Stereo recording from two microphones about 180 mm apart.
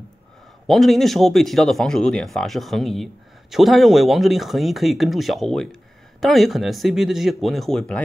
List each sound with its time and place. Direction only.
0.7 s speech: centre (ahead or behind)